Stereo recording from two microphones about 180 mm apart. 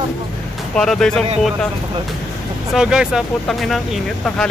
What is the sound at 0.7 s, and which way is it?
Speech, 5° left (ahead or behind).